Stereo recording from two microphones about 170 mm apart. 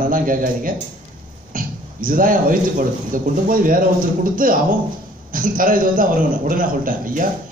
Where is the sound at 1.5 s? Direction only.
55° right (ahead or behind).